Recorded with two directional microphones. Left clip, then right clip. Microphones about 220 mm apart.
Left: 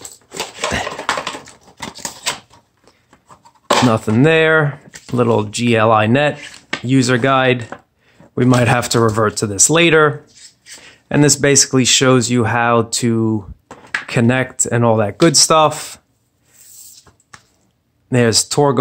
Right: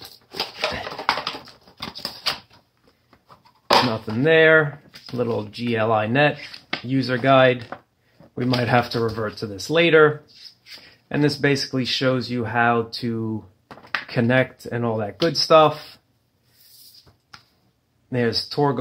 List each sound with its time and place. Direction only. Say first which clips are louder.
0.3 s dog: left 3 dB; 5° left (ahead or behind)
3.9 s speech: left 5 dB; 40° left (ahead or behind)
6.3 s a sound: left 5 dB; 5° left (ahead or behind)
6.9 s speech: left 4 dB; 35° left (ahead or behind)
18.1 s speech: left 8 dB; 35° left (ahead or behind)